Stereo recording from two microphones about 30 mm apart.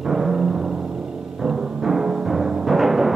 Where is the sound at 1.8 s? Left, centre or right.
Centre.